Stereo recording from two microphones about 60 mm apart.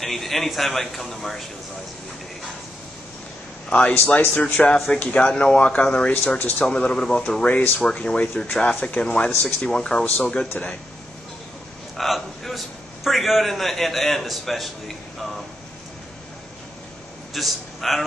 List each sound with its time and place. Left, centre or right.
0.0 s a man's voice: centre
3.7 s speech: left
6.6 s speech: centre
10.6 s speech: left
12.0 s a man's voice: centre
17.3 s a man's voice: centre